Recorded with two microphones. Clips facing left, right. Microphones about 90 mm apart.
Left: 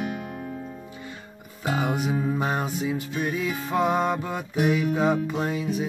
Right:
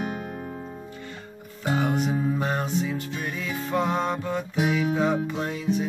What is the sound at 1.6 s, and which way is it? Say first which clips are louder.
Music: right 1 dB; 10° left (ahead or behind).